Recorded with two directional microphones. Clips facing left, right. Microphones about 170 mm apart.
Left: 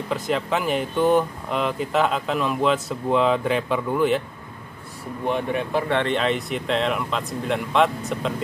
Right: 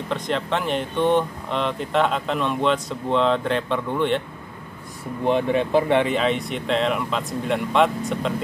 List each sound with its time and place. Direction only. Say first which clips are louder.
0.1 s speech: left 1 dB; 5° left (ahead or behind)
5.2 s speech: right 4 dB; 20° right (ahead or behind)
6.0 s speech: right 1 dB; centre (ahead or behind)